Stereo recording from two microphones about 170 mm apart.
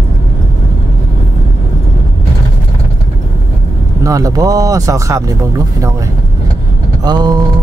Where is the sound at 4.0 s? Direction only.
20° right (ahead or behind).